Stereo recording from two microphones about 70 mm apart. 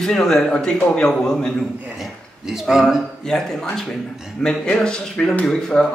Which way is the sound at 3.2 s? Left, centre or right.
Centre.